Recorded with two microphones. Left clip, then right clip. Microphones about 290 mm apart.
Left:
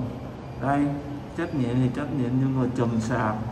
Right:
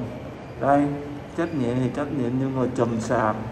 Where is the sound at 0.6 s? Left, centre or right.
Centre.